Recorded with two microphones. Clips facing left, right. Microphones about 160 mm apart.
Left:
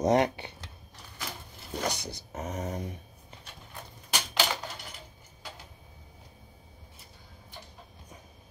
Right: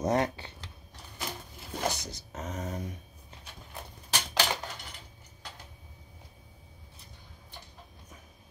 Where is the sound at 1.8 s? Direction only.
10° left (ahead or behind).